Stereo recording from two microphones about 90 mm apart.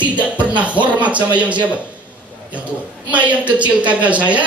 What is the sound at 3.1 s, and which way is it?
Speech, 15° right (ahead or behind).